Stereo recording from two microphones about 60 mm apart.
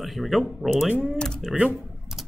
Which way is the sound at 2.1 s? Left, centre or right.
Centre.